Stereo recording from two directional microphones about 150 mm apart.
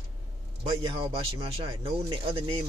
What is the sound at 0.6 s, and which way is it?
Speech, 35° right (ahead or behind).